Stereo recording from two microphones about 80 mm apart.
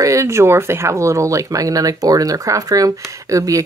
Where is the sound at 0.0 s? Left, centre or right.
Right.